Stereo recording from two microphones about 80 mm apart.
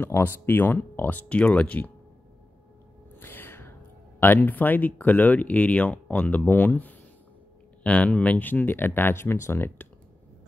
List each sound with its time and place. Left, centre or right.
0.0 s speech: left
3.2 s music: left
4.2 s speech: left